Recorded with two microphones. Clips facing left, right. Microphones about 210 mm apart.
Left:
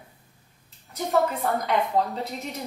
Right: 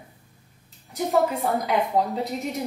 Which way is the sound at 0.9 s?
Centre (ahead or behind).